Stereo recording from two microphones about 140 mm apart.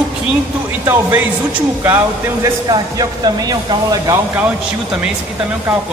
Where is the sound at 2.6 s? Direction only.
30° right (ahead or behind).